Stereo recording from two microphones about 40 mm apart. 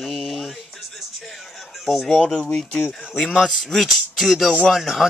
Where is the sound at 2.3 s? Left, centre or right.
Centre.